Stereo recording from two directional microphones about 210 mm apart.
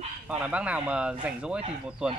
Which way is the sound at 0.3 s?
5° right (ahead or behind).